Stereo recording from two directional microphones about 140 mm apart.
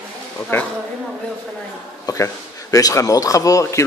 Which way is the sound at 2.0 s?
25° left (ahead or behind).